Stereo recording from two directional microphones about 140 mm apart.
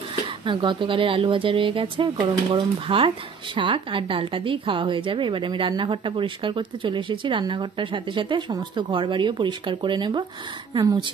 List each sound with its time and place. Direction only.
0.5 s a woman's voice: 35° right (ahead or behind)